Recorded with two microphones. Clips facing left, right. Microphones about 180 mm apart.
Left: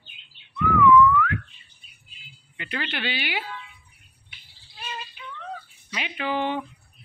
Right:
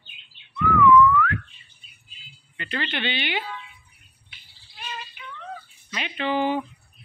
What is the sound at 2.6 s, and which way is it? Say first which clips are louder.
Speech: right 2 dB; 10° left (ahead or behind).